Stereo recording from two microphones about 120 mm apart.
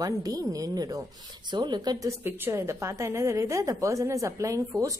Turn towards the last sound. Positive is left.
turn(degrees=-25)  # may be behind; listen again after turning